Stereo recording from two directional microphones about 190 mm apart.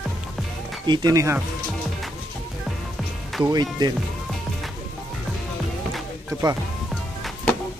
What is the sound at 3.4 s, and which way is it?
Speech, 20° right (ahead or behind).